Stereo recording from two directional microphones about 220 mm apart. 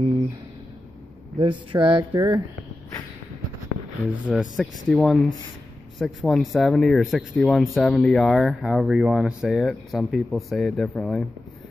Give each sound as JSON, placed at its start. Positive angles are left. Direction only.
{"t": 1.4, "sound": "speech", "side_deg": -20}
{"t": 4.3, "sound": "speech", "side_deg": 0}